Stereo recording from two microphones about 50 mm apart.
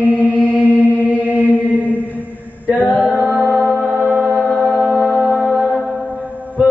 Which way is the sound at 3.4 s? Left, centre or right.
Right.